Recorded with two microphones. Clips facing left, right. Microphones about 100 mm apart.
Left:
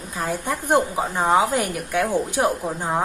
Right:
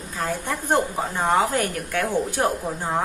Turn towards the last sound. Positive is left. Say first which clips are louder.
# left 1 dB
turn(degrees=15)  # may be behind; listen again after turning